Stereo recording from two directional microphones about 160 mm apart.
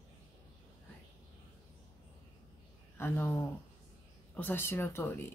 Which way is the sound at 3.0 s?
15° left (ahead or behind).